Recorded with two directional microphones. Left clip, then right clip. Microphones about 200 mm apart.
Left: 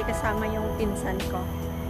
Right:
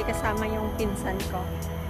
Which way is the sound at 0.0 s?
15° right (ahead or behind).